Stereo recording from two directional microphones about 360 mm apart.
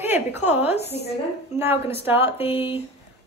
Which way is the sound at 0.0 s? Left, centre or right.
Centre.